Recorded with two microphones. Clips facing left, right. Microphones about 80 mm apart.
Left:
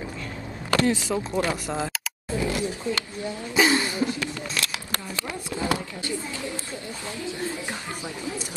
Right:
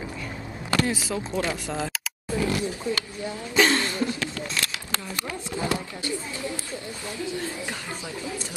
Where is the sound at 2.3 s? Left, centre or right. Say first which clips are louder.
Right 1 dB; left.